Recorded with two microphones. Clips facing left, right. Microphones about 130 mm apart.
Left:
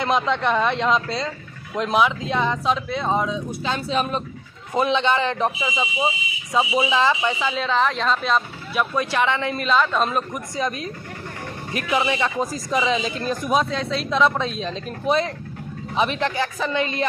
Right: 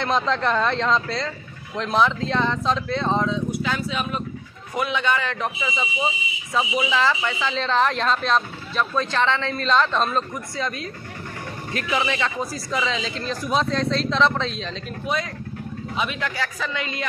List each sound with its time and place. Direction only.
0.0 s speech: 5° left (ahead or behind)
3.5 s speech: 25° left (ahead or behind); by 10.0 s 5° left (ahead or behind)
10.0 s speech: 15° left (ahead or behind)
16.0 s speech: 25° left (ahead or behind)